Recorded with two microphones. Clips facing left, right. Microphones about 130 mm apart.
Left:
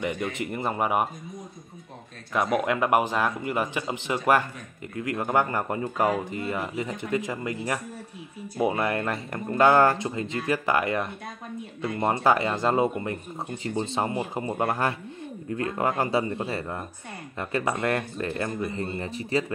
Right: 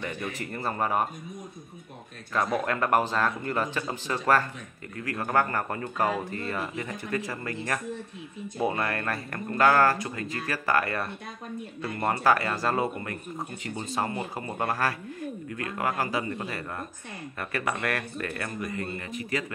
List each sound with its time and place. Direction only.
0.0 s speech: 15° left (ahead or behind)
2.3 s speech: 15° left (ahead or behind); by 19.4 s 30° left (ahead or behind)